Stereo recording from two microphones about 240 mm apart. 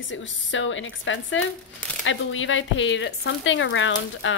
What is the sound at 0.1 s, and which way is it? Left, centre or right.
A woman's voice, left.